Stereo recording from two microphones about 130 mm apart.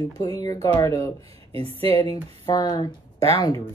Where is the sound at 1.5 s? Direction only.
45° right (ahead or behind).